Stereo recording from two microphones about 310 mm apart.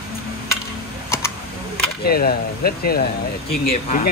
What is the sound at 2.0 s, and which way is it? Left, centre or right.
Speech, left.